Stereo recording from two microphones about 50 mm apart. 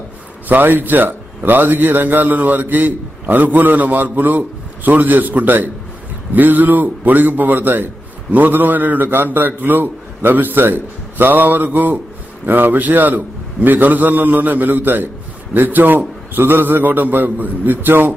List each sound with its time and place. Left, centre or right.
0.5 s a man's voice: right